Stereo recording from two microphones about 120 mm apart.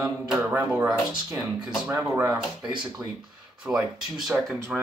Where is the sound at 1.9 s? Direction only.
25° right (ahead or behind).